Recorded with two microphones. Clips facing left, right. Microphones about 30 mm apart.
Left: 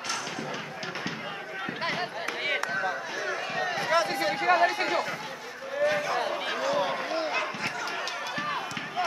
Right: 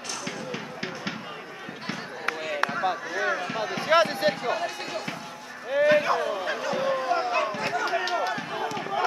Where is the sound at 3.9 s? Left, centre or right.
Right.